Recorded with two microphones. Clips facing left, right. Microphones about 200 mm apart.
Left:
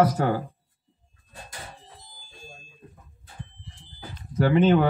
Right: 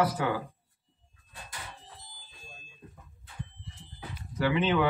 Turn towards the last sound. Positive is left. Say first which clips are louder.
# left 7 dB
turn(degrees=45)  # may be behind; listen again after turning